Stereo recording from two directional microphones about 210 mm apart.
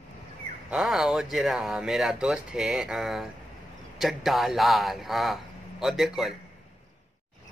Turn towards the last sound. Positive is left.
turn(degrees=0)  # may be behind; listen again after turning